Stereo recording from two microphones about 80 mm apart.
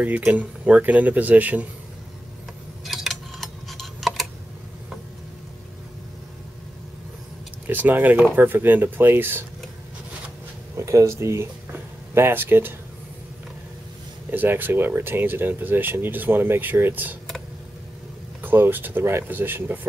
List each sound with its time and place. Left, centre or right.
0.0 s speech: centre
2.8 s tick-tock: centre
7.6 s speech: right
10.8 s speech: right
11.7 s a sound: right
14.3 s speech: right
18.4 s speech: right